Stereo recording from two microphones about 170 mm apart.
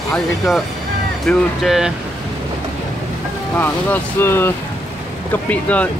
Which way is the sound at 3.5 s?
10° left (ahead or behind).